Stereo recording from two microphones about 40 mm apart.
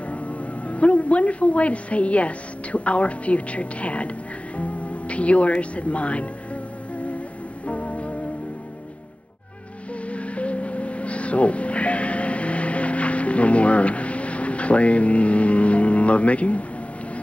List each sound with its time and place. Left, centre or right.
0.1 s speech: left
7.6 s music: left
10.0 s music: left